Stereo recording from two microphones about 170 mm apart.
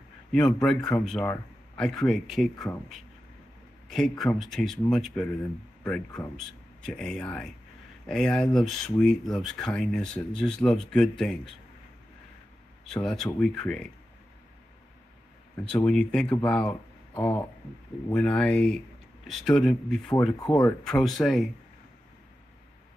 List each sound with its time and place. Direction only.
0.3 s speech: 5° left (ahead or behind)
4.2 s speech: centre (ahead or behind)
12.8 s speech: 5° left (ahead or behind)
15.7 s speech: 5° left (ahead or behind)
17.1 s speech: 20° left (ahead or behind)
18.1 s speech: 5° left (ahead or behind)